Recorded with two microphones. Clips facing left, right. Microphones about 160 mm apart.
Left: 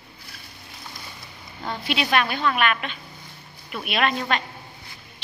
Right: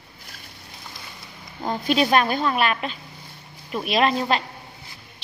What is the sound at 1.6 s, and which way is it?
A woman's voice, 40° right (ahead or behind).